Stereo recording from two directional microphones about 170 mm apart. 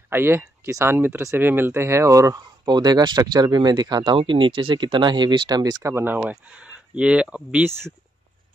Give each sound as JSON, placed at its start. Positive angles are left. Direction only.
{"t": 0.1, "sound": "speech", "side_deg": -15}